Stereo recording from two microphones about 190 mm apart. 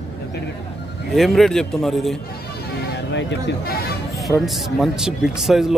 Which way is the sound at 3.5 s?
55° left (ahead or behind).